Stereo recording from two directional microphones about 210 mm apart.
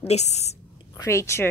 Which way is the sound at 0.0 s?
30° left (ahead or behind).